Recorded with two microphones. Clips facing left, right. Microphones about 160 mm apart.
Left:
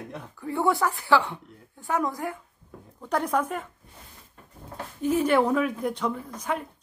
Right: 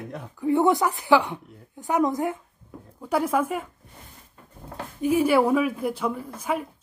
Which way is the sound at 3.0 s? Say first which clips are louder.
Right 2 dB; 5° right (ahead or behind).